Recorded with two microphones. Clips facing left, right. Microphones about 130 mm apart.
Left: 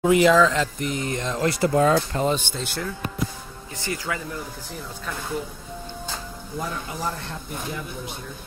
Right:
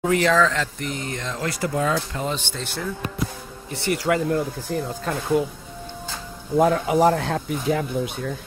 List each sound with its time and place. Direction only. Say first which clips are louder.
0.0 s speech: left 2 dB; 10° left (ahead or behind); by 1.7 s 25° left (ahead or behind)
1.8 s speech: left 4 dB; 40° left (ahead or behind)
2.2 s speech: left 4 dB; 15° left (ahead or behind)
4.1 s speech: right 10 dB; 60° right (ahead or behind)
6.5 s speech: right 14 dB; 75° right (ahead or behind)